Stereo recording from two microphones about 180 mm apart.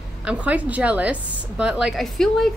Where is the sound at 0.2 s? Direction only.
5° right (ahead or behind).